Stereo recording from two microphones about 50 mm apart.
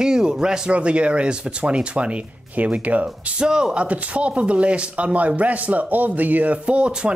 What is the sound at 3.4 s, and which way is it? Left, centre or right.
Speech, centre.